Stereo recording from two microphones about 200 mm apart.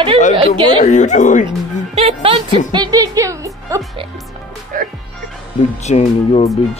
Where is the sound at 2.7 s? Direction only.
20° right (ahead or behind).